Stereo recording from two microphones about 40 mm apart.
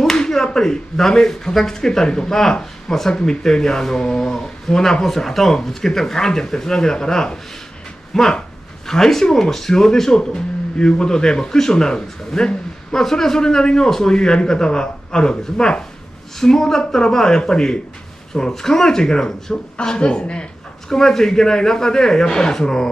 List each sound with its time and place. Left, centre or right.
0.2 s a man's voice: centre
20.9 s speech: centre